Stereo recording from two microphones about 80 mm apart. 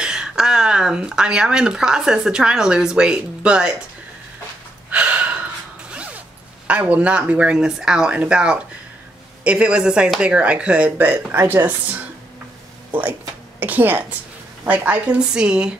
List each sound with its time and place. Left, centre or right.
0.0 s speech: centre
4.9 s gasp: centre
5.9 s zipper: centre
6.7 s speech: centre
13.6 s speech: right